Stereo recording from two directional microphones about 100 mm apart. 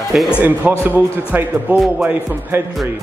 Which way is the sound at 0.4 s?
20° right (ahead or behind).